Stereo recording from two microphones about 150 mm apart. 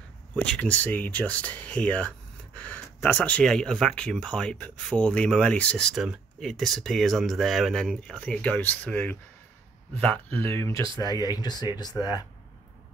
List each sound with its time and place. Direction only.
0.4 s speech: 10° left (ahead or behind); by 12.3 s 25° left (ahead or behind)